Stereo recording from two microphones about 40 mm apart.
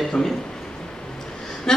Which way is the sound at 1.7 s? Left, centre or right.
Centre.